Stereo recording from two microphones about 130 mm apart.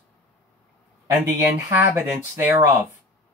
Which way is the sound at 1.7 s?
15° right (ahead or behind).